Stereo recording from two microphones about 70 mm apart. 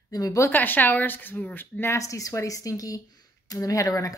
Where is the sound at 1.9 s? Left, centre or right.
Left.